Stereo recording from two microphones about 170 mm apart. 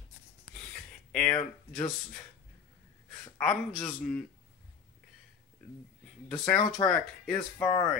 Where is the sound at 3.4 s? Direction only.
5° left (ahead or behind).